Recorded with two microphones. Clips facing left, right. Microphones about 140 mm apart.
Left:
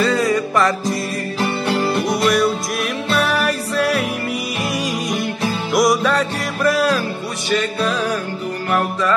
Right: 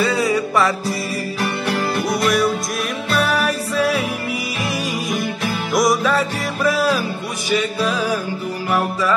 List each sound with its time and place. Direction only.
0.0 s music: 10° right (ahead or behind)
1.4 s music: 25° left (ahead or behind)
2.3 s music: centre (ahead or behind)
5.7 s music: centre (ahead or behind)